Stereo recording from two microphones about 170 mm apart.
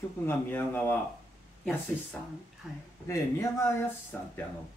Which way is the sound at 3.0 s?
15° left (ahead or behind).